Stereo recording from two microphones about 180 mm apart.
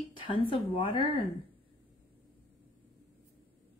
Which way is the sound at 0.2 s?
30° left (ahead or behind).